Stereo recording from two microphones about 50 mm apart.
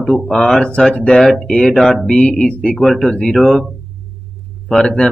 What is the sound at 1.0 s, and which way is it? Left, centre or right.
Speech, centre.